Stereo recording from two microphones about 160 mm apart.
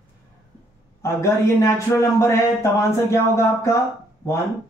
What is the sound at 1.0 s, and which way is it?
A man's voice, 15° left (ahead or behind).